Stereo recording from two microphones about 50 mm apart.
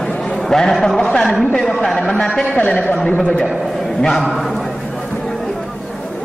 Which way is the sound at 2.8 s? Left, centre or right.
Centre.